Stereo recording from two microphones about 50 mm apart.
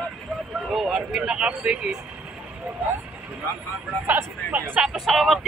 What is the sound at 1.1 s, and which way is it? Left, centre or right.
Speech, right.